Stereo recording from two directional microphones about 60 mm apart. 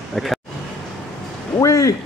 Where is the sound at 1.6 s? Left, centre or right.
Left.